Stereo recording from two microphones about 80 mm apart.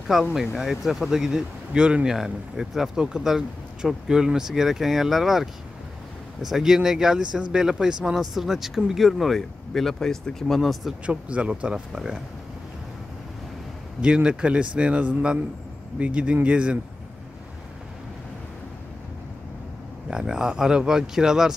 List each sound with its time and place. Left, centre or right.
0.1 s speech: centre
11.1 s speech: centre
14.0 s speech: centre
20.1 s speech: centre